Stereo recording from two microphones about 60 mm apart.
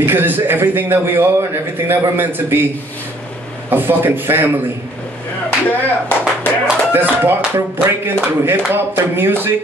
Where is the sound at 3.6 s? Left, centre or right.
Right.